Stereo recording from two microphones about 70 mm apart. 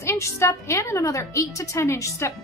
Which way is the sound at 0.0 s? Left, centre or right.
Left.